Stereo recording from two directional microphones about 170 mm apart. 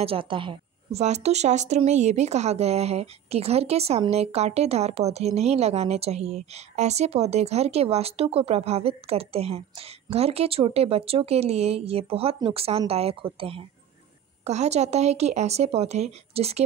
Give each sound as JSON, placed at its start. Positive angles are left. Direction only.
{"t": 0.0, "sound": "a woman's voice", "side_deg": -30}
{"t": 1.0, "sound": "a woman's voice", "side_deg": -40}